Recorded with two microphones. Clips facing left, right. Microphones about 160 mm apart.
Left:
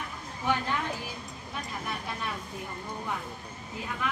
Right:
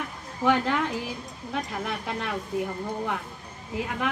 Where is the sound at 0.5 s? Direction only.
70° right (ahead or behind).